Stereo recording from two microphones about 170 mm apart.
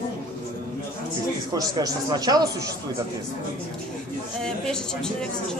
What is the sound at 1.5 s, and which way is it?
Speech, 20° right (ahead or behind).